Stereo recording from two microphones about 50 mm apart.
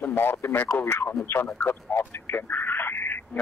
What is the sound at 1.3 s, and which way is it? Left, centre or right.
Speech, left.